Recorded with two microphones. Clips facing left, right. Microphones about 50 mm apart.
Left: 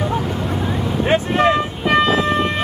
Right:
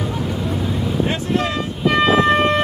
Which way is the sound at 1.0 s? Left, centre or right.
Left.